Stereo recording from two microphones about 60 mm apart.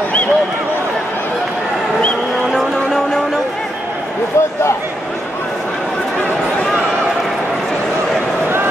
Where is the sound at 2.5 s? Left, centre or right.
Centre.